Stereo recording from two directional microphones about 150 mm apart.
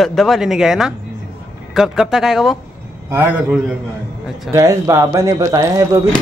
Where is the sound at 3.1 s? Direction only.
15° right (ahead or behind).